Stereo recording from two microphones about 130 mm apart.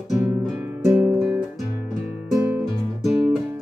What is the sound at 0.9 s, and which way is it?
Guitar, 15° right (ahead or behind).